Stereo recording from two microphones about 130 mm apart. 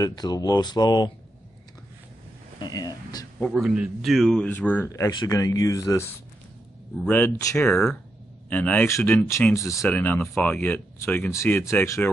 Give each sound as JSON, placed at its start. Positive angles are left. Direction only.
{"t": 0.0, "sound": "speech", "side_deg": 30}
{"t": 2.6, "sound": "speech", "side_deg": 30}
{"t": 3.5, "sound": "a man's voice", "side_deg": -5}
{"t": 4.5, "sound": "speech", "side_deg": 15}
{"t": 4.8, "sound": "speech", "side_deg": 25}